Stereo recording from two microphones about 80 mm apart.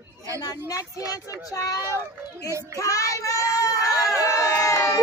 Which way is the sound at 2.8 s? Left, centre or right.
Left.